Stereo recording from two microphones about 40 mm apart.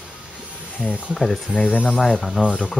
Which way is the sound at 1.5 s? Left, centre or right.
Left.